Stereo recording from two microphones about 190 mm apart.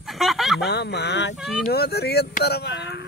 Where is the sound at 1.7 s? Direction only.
55° left (ahead or behind).